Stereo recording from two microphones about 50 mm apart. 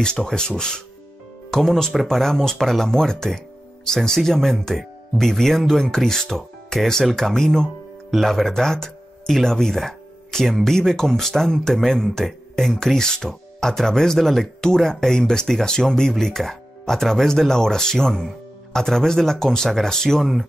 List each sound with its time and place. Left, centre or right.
0.0 s speech: centre